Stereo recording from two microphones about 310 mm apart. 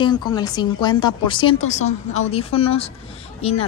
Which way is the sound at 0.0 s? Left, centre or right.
Centre.